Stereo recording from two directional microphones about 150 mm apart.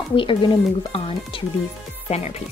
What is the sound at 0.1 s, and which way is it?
Speech, 35° left (ahead or behind).